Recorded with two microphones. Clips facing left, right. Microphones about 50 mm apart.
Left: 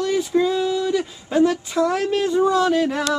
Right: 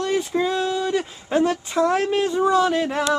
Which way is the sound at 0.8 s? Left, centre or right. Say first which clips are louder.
Left 1 dB; right.